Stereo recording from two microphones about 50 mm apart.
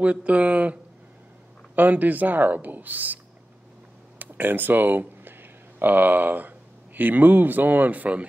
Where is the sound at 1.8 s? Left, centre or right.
Right.